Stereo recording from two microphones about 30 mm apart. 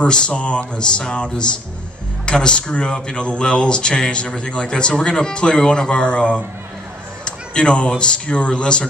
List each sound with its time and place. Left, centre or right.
0.0 s speech: left
7.2 s a sound: left
8.0 s speech: left